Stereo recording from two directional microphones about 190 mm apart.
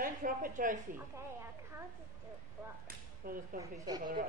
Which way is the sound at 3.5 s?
20° right (ahead or behind).